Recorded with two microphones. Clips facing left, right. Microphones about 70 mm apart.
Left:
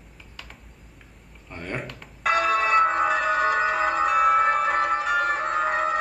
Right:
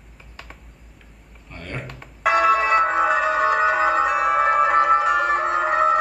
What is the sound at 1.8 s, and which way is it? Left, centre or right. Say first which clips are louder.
Music: right 3 dB; centre.